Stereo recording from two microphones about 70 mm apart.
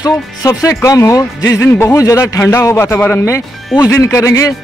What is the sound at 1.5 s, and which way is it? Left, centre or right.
A man's voice, left.